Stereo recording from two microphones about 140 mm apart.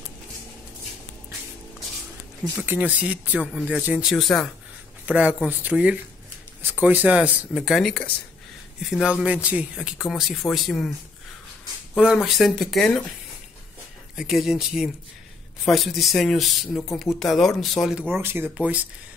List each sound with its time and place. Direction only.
2.6 s speech: 15° right (ahead or behind); by 4.5 s centre (ahead or behind)
5.0 s speech: 10° right (ahead or behind)
12.0 s speech: 5° right (ahead or behind)
14.1 s speech: 5° right (ahead or behind)
18.1 s speech: 15° right (ahead or behind)